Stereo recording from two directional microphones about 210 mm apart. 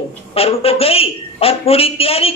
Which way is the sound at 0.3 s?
30° left (ahead or behind).